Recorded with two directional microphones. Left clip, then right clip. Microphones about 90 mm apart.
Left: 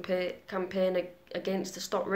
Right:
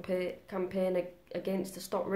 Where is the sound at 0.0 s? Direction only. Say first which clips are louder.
Left 3 dB; 25° right (ahead or behind).